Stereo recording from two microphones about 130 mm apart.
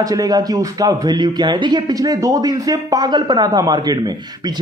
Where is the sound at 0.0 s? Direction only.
30° right (ahead or behind).